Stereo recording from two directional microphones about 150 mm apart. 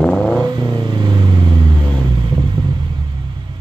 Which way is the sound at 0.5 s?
25° right (ahead or behind).